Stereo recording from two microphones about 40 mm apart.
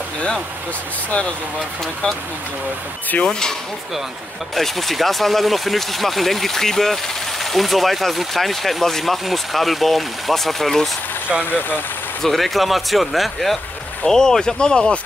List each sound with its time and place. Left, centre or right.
3.3 s speech: centre
4.6 s speech: centre
12.2 s speech: centre
14.0 s speech: centre